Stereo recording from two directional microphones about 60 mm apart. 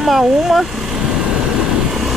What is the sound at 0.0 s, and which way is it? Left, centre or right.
Speech, centre.